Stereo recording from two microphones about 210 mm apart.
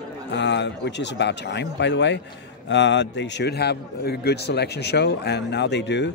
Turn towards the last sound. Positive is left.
turn(degrees=55)  # may be behind; listen again after turning